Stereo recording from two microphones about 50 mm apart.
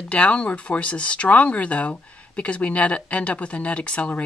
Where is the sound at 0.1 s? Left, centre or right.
Left.